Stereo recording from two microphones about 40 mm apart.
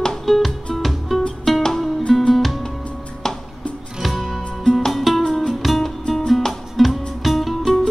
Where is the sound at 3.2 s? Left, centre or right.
Centre.